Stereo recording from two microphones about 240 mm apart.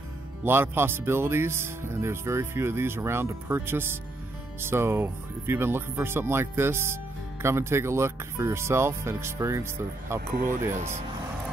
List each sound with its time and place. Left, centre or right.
0.4 s speech: centre
10.3 s speech: right